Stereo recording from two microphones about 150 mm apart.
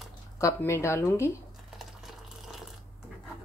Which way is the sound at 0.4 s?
20° left (ahead or behind).